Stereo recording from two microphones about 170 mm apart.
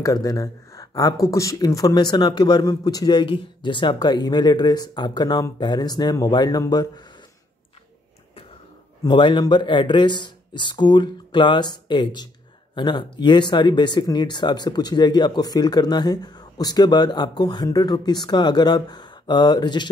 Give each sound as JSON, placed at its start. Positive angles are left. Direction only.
{"t": 0.0, "sound": "speech", "side_deg": 20}
{"t": 9.0, "sound": "speech", "side_deg": 25}